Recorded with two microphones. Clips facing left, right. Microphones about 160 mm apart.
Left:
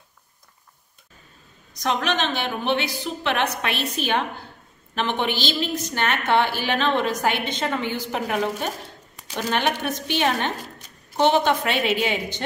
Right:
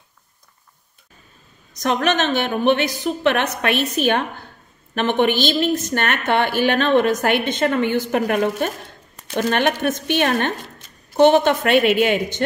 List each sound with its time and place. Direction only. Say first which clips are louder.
1.8 s a woman's voice: right 4 dB; 50° right (ahead or behind)